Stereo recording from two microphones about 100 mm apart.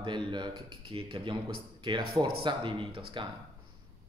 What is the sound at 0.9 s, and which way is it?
Speech, 60° right (ahead or behind).